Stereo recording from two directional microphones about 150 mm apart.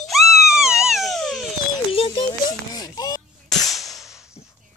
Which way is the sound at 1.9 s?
35° left (ahead or behind).